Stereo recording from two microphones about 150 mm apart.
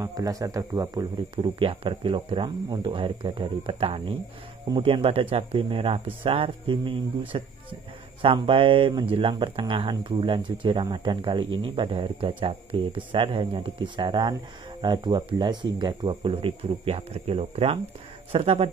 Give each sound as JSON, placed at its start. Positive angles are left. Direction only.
{"t": 0.0, "sound": "speech", "side_deg": -25}
{"t": 1.3, "sound": "speech", "side_deg": -35}